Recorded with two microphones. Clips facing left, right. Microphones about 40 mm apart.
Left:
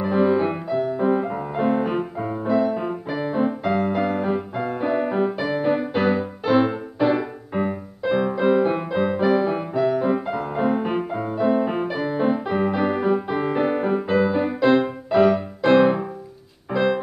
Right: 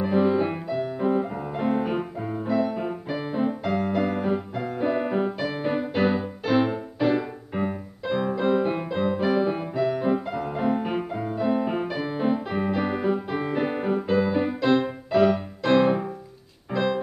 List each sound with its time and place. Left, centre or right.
0.0 s music: centre